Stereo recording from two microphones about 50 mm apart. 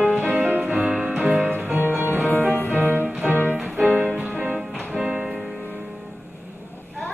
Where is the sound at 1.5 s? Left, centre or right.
Right.